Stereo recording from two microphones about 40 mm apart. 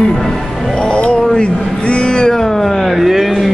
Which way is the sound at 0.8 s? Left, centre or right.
Left.